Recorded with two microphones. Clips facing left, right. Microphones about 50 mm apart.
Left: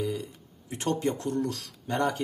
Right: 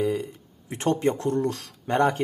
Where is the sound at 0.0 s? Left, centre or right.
Right.